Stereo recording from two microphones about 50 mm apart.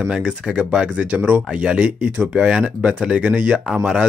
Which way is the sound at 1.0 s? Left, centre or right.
Right.